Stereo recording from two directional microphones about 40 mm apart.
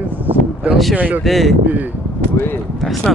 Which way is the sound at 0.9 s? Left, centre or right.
Right.